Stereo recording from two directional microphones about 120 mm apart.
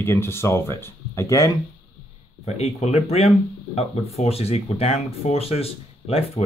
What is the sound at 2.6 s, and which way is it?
Speech, 60° left (ahead or behind).